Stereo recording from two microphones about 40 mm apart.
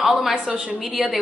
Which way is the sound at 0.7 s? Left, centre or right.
Centre.